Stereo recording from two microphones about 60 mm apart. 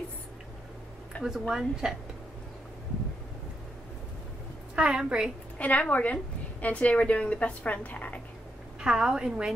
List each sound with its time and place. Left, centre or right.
1.1 s a sound: left
1.5 s a woman's voice: centre
4.7 s a woman's voice: centre
5.6 s a woman's voice: left
8.8 s a woman's voice: centre